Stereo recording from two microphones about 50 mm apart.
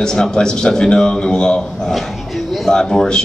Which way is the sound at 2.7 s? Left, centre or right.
Centre.